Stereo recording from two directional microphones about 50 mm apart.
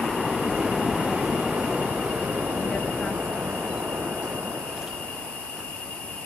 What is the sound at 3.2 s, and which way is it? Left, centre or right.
Train, right.